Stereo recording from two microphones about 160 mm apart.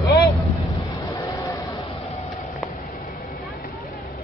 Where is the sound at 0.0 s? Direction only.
20° left (ahead or behind).